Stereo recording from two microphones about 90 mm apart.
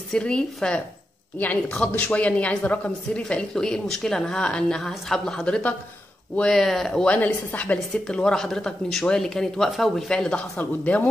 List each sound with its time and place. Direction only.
0.1 s a woman's voice: 10° left (ahead or behind)
7.2 s a woman's voice: 20° left (ahead or behind)
10.6 s speech: 20° left (ahead or behind)